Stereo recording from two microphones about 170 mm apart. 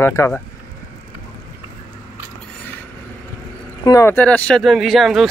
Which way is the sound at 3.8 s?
20° left (ahead or behind).